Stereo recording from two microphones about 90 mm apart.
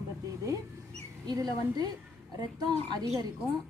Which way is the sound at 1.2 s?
45° right (ahead or behind).